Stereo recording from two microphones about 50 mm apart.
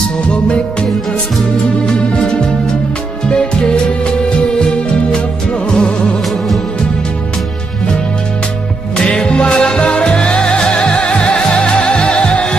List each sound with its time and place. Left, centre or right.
0.3 s music: centre
1.9 s music: centre
5.1 s music: centre
8.9 s music: centre